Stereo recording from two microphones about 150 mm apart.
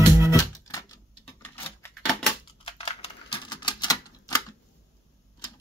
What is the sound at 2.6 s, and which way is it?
Typewriter, 40° left (ahead or behind).